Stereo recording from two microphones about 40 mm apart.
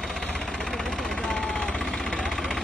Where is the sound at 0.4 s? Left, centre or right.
Centre.